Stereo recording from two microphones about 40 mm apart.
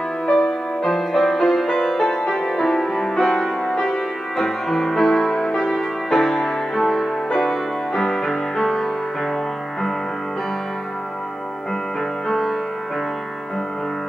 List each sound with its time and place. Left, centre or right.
0.3 s music: centre
12.3 s music: centre